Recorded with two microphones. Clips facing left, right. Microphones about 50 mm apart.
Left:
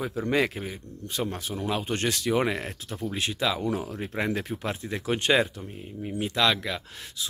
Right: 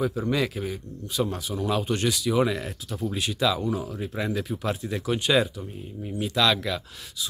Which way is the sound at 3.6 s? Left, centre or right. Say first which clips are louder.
Right 1 dB; left.